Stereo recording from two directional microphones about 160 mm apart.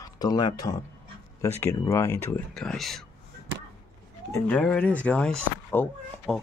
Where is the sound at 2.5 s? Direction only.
5° left (ahead or behind).